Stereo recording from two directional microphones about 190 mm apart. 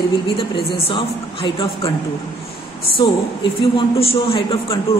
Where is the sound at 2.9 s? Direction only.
25° left (ahead or behind).